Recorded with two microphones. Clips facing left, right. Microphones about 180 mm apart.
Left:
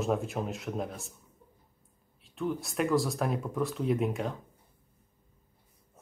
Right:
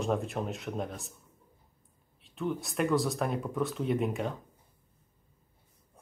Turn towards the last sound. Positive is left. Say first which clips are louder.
# left 1 dB
turn(degrees=0)  # may be behind; listen again after turning